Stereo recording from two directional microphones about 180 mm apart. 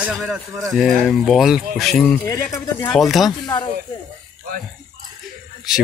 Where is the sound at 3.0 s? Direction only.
Centre (ahead or behind).